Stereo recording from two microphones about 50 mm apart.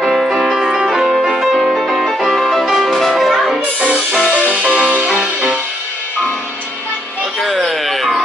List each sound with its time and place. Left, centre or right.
0.0 s music: centre
4.2 s music: left
4.9 s music: right
7.3 s a sound: centre